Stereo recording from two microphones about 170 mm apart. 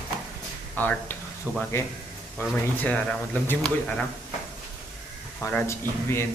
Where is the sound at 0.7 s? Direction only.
10° left (ahead or behind).